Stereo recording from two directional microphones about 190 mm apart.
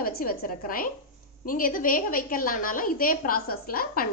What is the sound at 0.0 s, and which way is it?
A woman's voice, 50° left (ahead or behind).